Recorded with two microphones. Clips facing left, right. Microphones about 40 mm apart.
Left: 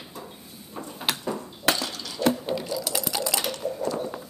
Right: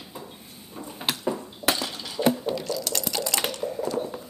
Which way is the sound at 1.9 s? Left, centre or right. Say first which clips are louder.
Right 1 dB; centre.